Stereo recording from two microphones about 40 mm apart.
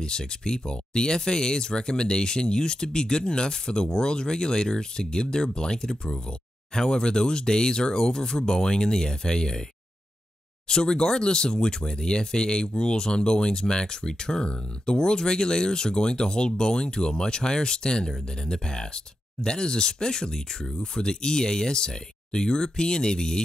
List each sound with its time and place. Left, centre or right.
0.0 s speech: centre
10.7 s speech: centre